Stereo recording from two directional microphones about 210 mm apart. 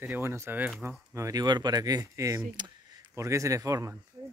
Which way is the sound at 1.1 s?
15° right (ahead or behind).